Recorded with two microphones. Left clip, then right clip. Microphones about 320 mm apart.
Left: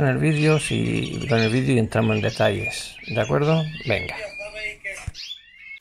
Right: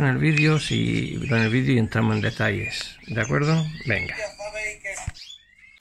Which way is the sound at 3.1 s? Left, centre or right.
Left.